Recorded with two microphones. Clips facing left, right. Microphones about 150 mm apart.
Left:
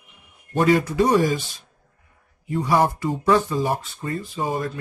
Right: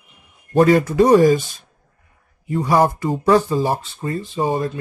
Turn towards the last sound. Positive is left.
turn(degrees=-25)  # may be behind; listen again after turning